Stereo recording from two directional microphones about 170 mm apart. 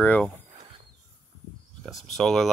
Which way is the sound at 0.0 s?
10° left (ahead or behind).